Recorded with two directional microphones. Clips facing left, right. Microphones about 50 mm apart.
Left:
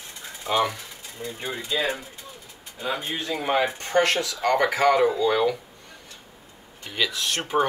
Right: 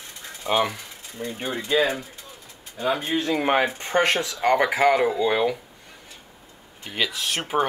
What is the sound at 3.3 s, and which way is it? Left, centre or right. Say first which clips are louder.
Speech: even; right.